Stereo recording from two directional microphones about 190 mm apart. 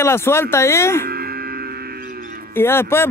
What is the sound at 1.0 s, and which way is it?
Music, 55° right (ahead or behind).